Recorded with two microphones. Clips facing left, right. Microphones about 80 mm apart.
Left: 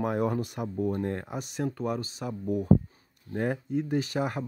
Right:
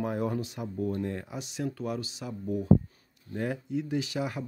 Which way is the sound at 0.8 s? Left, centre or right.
Left.